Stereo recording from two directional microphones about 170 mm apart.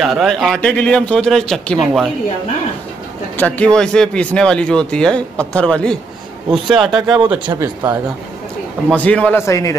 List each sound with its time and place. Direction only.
0.0 s speech: centre (ahead or behind)
3.3 s speech: 10° left (ahead or behind)
7.6 s speech: 20° right (ahead or behind)
8.9 s a man's voice: 10° left (ahead or behind)